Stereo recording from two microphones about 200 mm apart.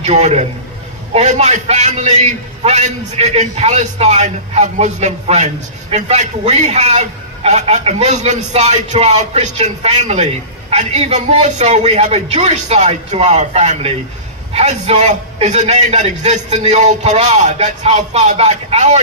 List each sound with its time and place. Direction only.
0.0 s a man's voice: 35° right (ahead or behind)